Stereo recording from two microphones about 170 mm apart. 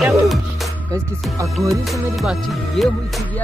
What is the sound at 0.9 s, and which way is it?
Speech, 20° right (ahead or behind).